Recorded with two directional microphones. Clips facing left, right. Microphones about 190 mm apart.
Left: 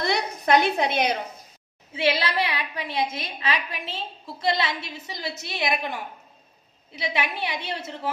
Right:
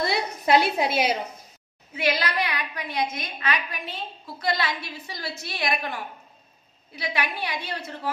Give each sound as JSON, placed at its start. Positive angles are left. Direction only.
{"t": 0.1, "sound": "a woman's voice", "side_deg": -5}
{"t": 2.0, "sound": "a woman's voice", "side_deg": 25}